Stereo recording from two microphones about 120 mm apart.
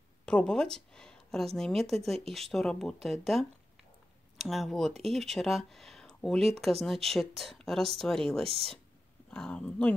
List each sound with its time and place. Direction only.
0.2 s speech: 10° left (ahead or behind)